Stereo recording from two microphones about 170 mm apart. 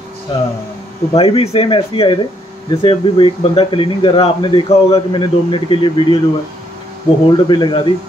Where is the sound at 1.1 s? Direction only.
35° left (ahead or behind).